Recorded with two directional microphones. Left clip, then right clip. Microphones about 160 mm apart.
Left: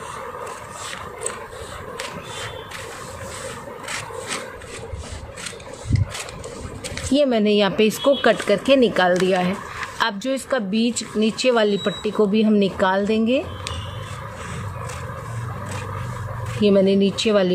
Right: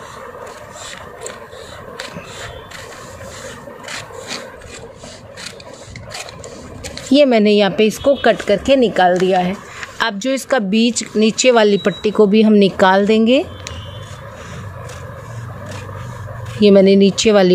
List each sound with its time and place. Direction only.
7.1 s a woman's voice: 30° right (ahead or behind)
16.6 s speech: 30° right (ahead or behind)